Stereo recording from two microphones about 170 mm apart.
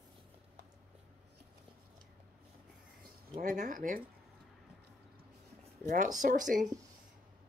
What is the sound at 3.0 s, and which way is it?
Speech, 55° right (ahead or behind).